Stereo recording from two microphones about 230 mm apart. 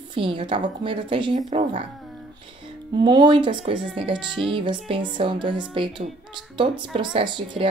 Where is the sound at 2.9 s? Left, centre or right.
Centre.